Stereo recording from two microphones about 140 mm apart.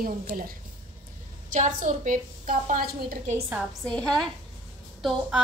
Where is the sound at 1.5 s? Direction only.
60° right (ahead or behind); by 3.3 s 90° right.